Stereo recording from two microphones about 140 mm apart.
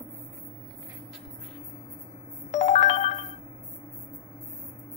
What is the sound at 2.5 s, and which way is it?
Ringtone, 60° left (ahead or behind).